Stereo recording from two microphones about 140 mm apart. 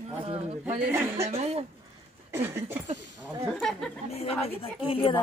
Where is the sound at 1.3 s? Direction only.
45° right (ahead or behind).